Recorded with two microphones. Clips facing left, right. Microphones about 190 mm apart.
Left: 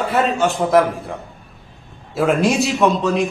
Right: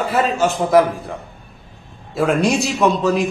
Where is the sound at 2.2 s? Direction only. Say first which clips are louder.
Even; centre (ahead or behind).